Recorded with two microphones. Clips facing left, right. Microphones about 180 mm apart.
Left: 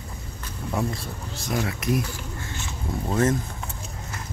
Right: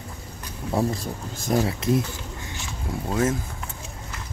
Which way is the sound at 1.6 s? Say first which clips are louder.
Right 2 dB; 30° right (ahead or behind).